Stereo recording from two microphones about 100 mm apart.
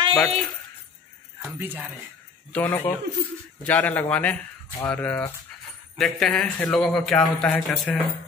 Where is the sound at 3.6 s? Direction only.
15° left (ahead or behind).